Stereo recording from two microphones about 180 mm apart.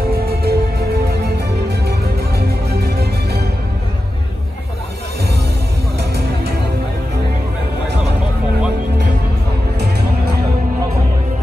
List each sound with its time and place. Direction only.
0.1 s music: 60° right (ahead or behind)
1.9 s music: 65° right (ahead or behind)
5.9 s music: 65° right (ahead or behind)
9.8 s music: 65° right (ahead or behind)